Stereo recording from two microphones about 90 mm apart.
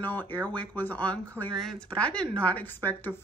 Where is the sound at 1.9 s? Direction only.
15° left (ahead or behind).